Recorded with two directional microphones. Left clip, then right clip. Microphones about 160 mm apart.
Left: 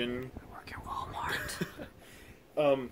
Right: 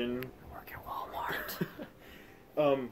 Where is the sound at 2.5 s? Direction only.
25° left (ahead or behind).